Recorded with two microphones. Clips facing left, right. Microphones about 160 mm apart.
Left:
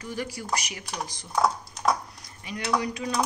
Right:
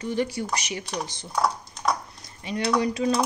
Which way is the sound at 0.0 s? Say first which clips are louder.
Right 7 dB; 25° right (ahead or behind).